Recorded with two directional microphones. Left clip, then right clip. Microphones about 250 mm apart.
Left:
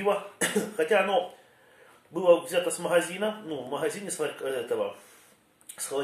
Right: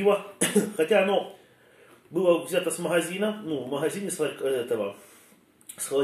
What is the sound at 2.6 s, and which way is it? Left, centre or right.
Speech, centre.